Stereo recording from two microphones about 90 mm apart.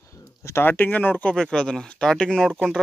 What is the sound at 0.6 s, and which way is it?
Speech, 20° left (ahead or behind).